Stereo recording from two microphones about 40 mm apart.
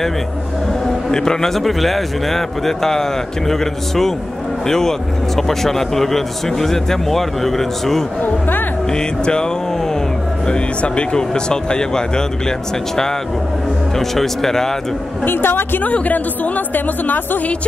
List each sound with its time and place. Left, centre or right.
1.1 s a man's voice: centre
8.2 s speech: left
8.9 s a man's voice: centre
15.2 s a woman's voice: left
15.8 s speech: left